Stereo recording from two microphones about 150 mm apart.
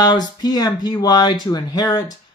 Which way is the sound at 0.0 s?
30° left (ahead or behind).